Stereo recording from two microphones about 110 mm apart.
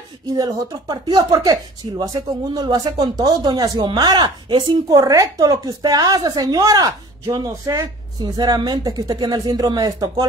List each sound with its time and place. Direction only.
0.3 s a woman's voice: 35° right (ahead or behind)
4.8 s a woman's voice: 30° right (ahead or behind)